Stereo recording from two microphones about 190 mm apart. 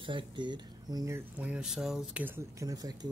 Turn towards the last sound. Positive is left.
turn(degrees=-20)  # may be behind; listen again after turning